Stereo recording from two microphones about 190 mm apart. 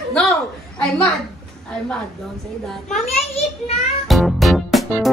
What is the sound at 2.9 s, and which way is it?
Speech, 35° left (ahead or behind).